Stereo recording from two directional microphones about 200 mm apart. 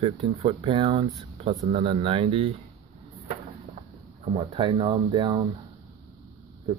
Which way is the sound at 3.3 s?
35° right (ahead or behind).